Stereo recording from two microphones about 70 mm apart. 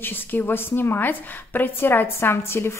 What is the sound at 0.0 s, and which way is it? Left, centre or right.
A woman's voice, left.